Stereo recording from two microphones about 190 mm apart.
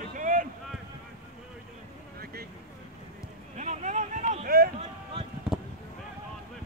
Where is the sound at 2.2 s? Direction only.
55° right (ahead or behind).